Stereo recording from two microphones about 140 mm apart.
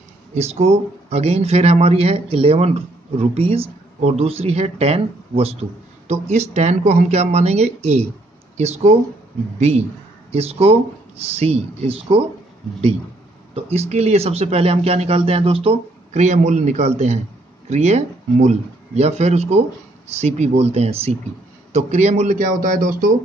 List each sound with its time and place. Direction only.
0.3 s speech: 50° right (ahead or behind)
13.6 s speech: 45° right (ahead or behind); by 23.1 s 80° right